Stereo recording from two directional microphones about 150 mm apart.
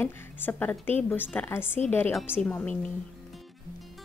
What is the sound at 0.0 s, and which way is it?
Speech, 15° left (ahead or behind).